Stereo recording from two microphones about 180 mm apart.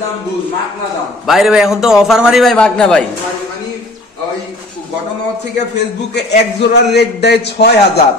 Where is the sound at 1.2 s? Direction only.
Centre (ahead or behind).